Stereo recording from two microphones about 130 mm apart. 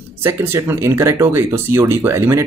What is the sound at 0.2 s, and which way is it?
Speech, 20° right (ahead or behind).